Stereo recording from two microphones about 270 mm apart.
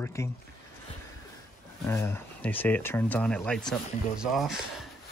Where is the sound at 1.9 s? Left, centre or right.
Centre.